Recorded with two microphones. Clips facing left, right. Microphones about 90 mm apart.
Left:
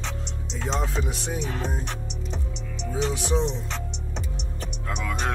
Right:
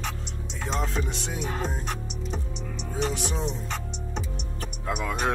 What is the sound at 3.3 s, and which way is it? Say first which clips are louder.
Speech: left 5 dB; 5° right (ahead or behind).